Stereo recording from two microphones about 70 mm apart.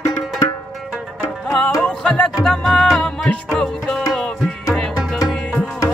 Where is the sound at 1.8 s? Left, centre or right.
Centre.